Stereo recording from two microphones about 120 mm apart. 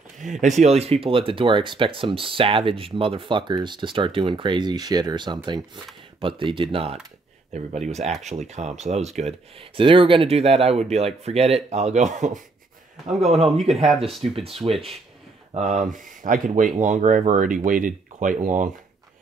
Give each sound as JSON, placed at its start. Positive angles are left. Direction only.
{"t": 0.2, "sound": "speech", "side_deg": -90}
{"t": 7.5, "sound": "speech", "side_deg": -70}
{"t": 9.8, "sound": "speech", "side_deg": -45}
{"t": 14.3, "sound": "speech", "side_deg": -55}
{"t": 15.5, "sound": "speech", "side_deg": -85}